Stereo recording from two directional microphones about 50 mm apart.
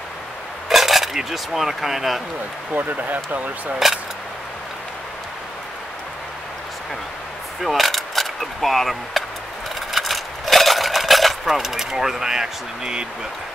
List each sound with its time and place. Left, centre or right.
0.7 s speech: centre
2.7 s speech: right
7.6 s a sound: centre
11.5 s speech: centre